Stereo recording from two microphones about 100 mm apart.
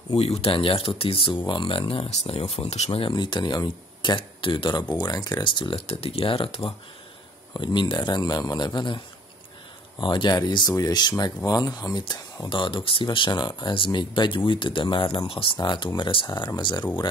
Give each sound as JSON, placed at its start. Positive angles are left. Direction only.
{"t": 0.1, "sound": "speech", "side_deg": 80}
{"t": 4.9, "sound": "speech", "side_deg": 40}
{"t": 5.6, "sound": "speech", "side_deg": 65}
{"t": 7.5, "sound": "speech", "side_deg": 50}
{"t": 16.3, "sound": "speech", "side_deg": 50}